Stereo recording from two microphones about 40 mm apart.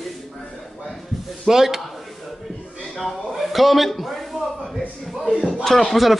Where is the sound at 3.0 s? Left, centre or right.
Centre.